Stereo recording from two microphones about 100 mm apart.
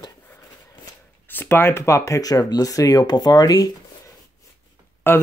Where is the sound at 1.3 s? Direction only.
20° left (ahead or behind); by 3.7 s 40° left (ahead or behind).